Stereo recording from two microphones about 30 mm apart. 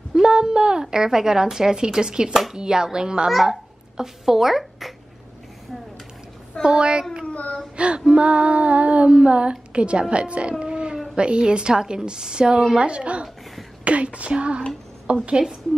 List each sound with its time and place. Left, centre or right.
0.1 s a woman's voice: right
3.3 s speech: centre
6.6 s speech: right
7.7 s child singing: right
8.1 s speech: right
10.6 s a sound: right
11.1 s a woman's voice: right